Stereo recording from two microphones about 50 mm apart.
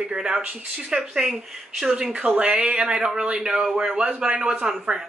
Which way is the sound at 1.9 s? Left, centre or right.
Centre.